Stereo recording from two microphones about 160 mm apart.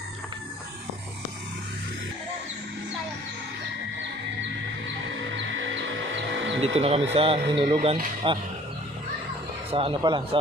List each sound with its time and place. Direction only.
6.6 s speech: 40° right (ahead or behind)
9.7 s speech: 35° right (ahead or behind)